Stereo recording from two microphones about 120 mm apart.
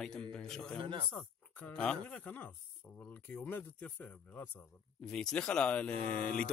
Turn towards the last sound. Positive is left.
turn(degrees=10)  # may be behind; listen again after turning